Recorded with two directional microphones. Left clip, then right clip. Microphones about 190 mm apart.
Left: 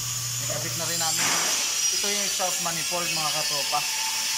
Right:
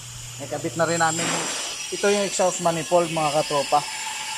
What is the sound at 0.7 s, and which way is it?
Speech, 60° right (ahead or behind).